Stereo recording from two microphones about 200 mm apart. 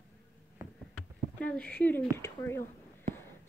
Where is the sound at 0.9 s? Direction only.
5° left (ahead or behind).